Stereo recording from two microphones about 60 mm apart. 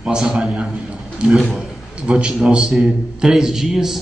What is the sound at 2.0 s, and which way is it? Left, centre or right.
A man's voice, centre.